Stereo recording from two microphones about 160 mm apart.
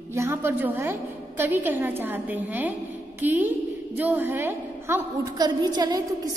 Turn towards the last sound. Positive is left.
turn(degrees=-25)  # may be behind; listen again after turning